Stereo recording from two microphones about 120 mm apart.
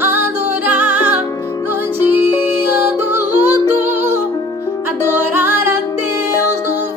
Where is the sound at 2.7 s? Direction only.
20° right (ahead or behind).